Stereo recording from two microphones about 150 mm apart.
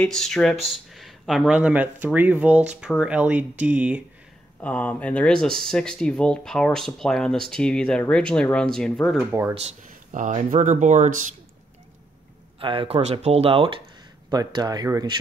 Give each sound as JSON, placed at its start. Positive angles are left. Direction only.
{"t": 0.0, "sound": "speech", "side_deg": 5}
{"t": 4.6, "sound": "speech", "side_deg": 10}
{"t": 9.8, "sound": "speech", "side_deg": -60}
{"t": 12.5, "sound": "speech", "side_deg": -35}
{"t": 14.3, "sound": "speech", "side_deg": -25}